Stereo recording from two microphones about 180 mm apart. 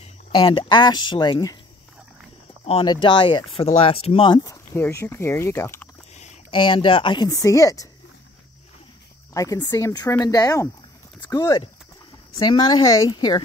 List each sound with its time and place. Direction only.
0.0 s speech: 30° left (ahead or behind)
2.6 s speech: 30° left (ahead or behind); by 5.9 s 15° left (ahead or behind)
6.1 s speech: 35° left (ahead or behind); by 7.9 s 20° left (ahead or behind)
9.3 s speech: 20° left (ahead or behind)